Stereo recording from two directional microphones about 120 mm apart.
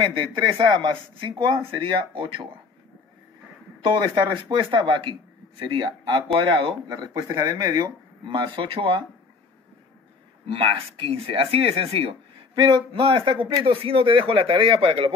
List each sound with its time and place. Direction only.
0.2 s speech: 40° right (ahead or behind)
3.8 s speech: 45° right (ahead or behind)
6.9 s speech: 30° right (ahead or behind); by 9.0 s 50° right (ahead or behind)
10.5 s speech: 50° right (ahead or behind)